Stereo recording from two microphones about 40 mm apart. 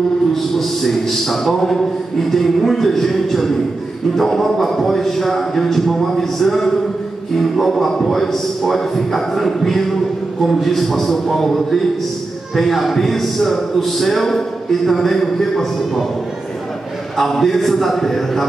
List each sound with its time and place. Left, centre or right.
0.3 s a man's voice: centre
17.2 s a man's voice: centre